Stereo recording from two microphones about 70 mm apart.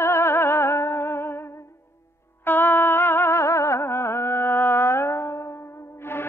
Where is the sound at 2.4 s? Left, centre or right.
Left.